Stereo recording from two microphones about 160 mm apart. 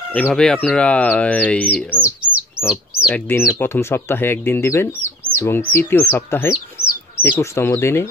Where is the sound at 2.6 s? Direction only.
5° right (ahead or behind).